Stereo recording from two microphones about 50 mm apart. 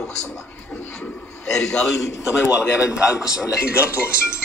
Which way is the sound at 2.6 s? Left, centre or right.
Centre.